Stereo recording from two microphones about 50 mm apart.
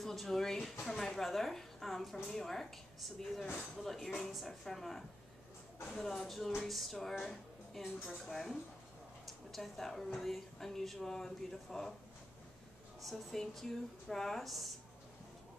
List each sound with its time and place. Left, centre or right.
0.0 s speech: centre
13.1 s speech: centre